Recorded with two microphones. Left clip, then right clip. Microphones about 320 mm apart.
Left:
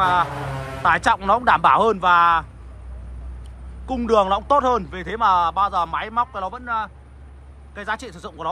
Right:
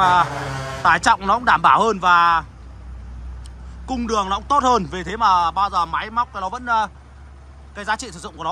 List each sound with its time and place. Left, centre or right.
0.0 s a man's voice: centre
3.8 s a man's voice: centre